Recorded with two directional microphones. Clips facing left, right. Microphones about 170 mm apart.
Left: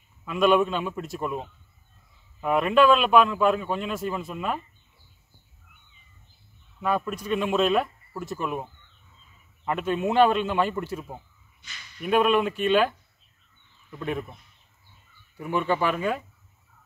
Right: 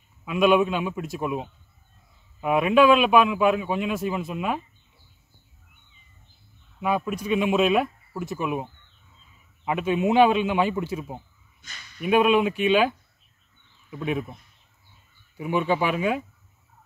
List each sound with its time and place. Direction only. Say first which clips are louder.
0.2 s speech: right 1 dB; 5° right (ahead or behind)
6.8 s speech: right 1 dB; 10° right (ahead or behind)
9.7 s speech: right 3 dB; 10° right (ahead or behind)
11.6 s speech: right 1 dB; 45° right (ahead or behind)
12.0 s speech: right 2 dB; 5° right (ahead or behind)
15.3 s speech: right 2 dB; 10° right (ahead or behind)